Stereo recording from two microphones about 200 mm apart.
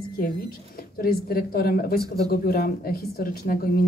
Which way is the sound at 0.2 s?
45° left (ahead or behind).